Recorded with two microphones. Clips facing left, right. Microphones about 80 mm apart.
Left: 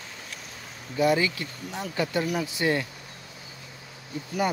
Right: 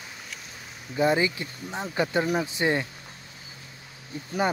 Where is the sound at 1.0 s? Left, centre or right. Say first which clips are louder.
Even; right.